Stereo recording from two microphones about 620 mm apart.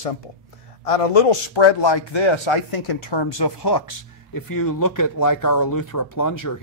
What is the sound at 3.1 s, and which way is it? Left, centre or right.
Speech, left.